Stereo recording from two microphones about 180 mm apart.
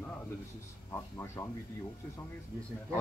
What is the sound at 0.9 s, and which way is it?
Speech, 10° left (ahead or behind).